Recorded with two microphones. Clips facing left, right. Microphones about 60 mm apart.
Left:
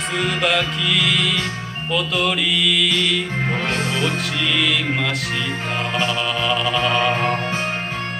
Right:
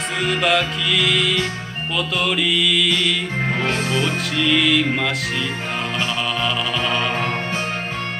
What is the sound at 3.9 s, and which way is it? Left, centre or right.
Music, centre.